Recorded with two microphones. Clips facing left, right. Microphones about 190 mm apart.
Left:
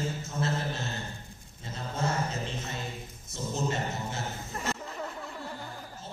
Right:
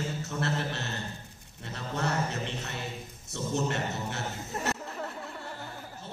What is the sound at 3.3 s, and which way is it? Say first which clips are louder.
Speech: right 1 dB; 70° right (ahead or behind).